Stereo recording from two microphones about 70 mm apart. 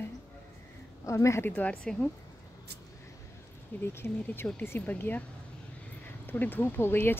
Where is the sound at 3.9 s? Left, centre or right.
Left.